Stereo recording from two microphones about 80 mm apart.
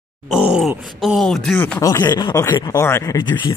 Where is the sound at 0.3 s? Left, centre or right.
Centre.